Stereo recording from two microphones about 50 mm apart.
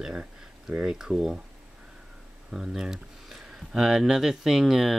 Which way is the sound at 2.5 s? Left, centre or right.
Centre.